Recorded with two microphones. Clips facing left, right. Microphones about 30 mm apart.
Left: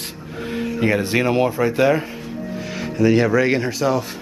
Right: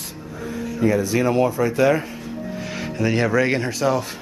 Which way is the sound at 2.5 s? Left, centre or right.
Centre.